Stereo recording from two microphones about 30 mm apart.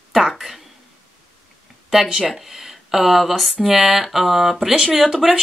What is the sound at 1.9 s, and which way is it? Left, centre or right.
Speech, centre.